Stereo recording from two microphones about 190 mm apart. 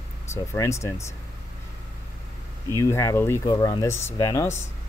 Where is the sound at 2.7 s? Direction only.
15° left (ahead or behind).